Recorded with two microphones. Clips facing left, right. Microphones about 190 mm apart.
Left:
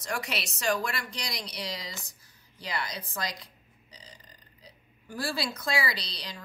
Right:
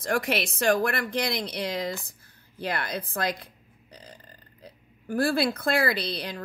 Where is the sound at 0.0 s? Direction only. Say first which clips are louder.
Right 8 dB; 55° right (ahead or behind).